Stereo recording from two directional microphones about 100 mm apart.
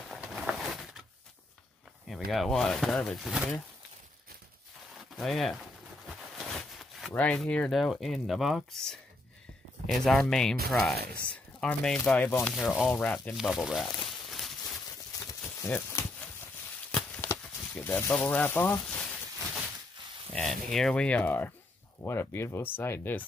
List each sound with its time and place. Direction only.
0.4 s a sound: 5° right (ahead or behind)
2.0 s speech: centre (ahead or behind)
5.1 s speech: 5° left (ahead or behind)
6.0 s a sound: centre (ahead or behind)
7.2 s speech: 10° left (ahead or behind)
12.4 s speech: 5° left (ahead or behind)
12.9 s speech: 15° left (ahead or behind)
13.3 s speech: centre (ahead or behind)
14.0 s walk: centre (ahead or behind)
15.6 s a sound: 25° left (ahead or behind)
17.2 s a sound: 20° left (ahead or behind)
20.3 s speech: 5° left (ahead or behind); by 23.2 s 20° left (ahead or behind)